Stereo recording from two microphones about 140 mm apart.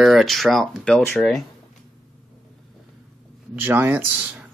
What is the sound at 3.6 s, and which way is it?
Speech, 15° right (ahead or behind).